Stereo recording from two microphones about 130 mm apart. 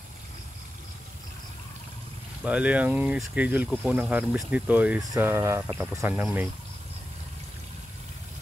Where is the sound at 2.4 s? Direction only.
10° right (ahead or behind).